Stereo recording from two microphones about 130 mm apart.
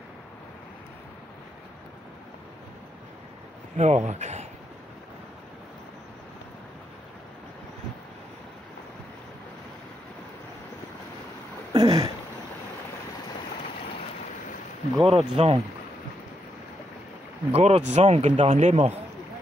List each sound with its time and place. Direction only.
3.7 s speech: 60° right (ahead or behind)
11.7 s a sound: 30° right (ahead or behind)
15.0 s speech: 50° right (ahead or behind)
17.5 s speech: 55° right (ahead or behind)